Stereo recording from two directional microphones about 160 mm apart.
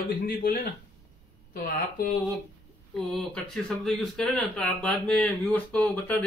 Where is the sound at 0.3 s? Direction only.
65° left (ahead or behind).